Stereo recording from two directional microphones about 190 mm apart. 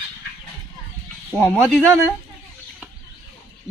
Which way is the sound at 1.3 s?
10° right (ahead or behind).